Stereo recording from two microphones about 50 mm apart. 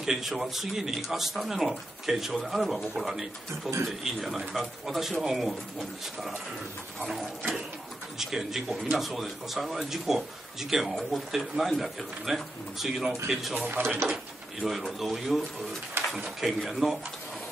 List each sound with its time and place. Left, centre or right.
0.0 s speech: centre
13.7 s speech: right
14.0 s speech: centre